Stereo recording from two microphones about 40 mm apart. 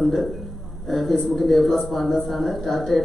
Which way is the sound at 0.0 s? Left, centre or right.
Centre.